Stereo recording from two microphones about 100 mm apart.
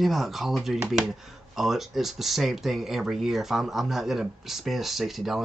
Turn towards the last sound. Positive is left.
turn(degrees=0)  # may be behind; listen again after turning